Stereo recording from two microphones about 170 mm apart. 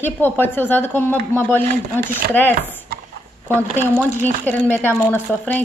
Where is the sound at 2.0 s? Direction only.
50° right (ahead or behind).